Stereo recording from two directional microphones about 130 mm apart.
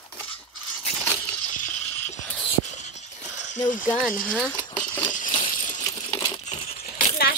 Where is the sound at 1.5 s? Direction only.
85° left.